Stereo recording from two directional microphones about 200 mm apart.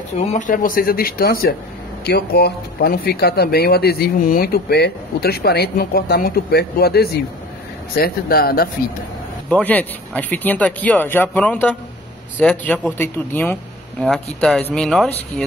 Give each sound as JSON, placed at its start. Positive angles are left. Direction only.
{"t": 0.3, "sound": "speech", "side_deg": 40}
{"t": 9.5, "sound": "speech", "side_deg": 10}